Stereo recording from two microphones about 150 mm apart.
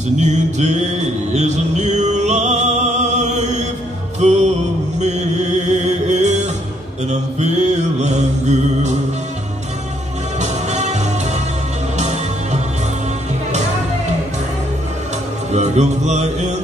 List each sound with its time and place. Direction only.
0.2 s mantra: 50° right (ahead or behind)
4.2 s music: 50° right (ahead or behind)
7.1 s mantra: 50° right (ahead or behind)
10.4 s music: 50° right (ahead or behind)
15.5 s music: 50° right (ahead or behind)